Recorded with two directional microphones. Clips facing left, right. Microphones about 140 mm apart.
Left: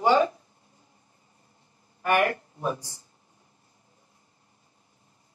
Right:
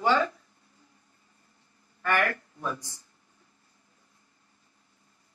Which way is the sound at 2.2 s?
25° left (ahead or behind).